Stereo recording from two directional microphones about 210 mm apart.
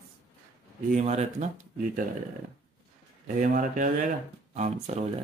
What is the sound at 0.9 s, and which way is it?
Speech, 35° right (ahead or behind).